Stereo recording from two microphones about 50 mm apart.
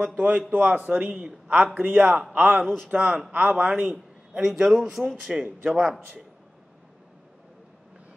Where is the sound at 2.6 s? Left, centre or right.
Centre.